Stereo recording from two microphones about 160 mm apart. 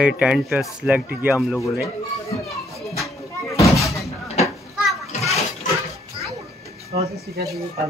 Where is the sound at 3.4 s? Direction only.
20° left (ahead or behind).